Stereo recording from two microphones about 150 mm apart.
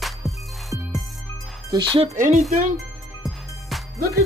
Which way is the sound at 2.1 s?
55° right (ahead or behind).